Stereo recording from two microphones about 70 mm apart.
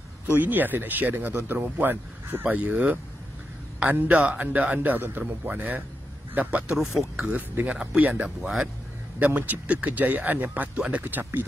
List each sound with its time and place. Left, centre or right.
0.3 s speech: right
6.7 s speech: centre
7.2 s speech: right
8.4 s speech: centre
9.2 s speech: right